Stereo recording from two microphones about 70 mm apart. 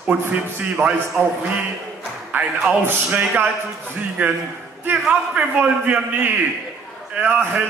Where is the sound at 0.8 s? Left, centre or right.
Right.